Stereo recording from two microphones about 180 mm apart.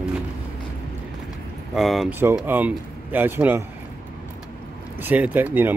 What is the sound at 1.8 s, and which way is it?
Speech, centre (ahead or behind).